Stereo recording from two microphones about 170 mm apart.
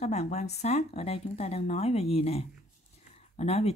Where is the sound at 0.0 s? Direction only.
40° left (ahead or behind).